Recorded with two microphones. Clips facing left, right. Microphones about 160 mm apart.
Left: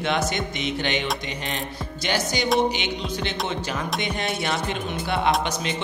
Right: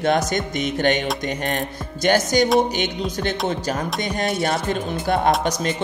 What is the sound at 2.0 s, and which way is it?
Speech, 45° right (ahead or behind).